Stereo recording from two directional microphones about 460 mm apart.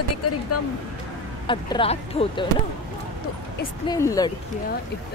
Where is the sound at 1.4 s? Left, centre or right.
Centre.